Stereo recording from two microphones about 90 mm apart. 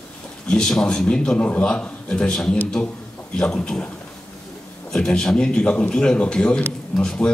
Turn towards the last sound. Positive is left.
turn(degrees=5)  # may be behind; listen again after turning